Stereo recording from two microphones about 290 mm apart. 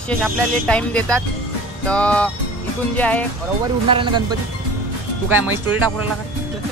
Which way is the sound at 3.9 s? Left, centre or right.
Centre.